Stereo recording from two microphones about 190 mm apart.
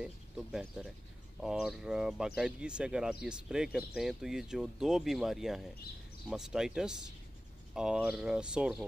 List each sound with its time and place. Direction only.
0.0 s speech: 5° right (ahead or behind)